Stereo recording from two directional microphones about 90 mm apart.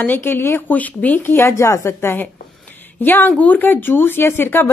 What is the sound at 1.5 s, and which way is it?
A woman's voice, 40° left (ahead or behind).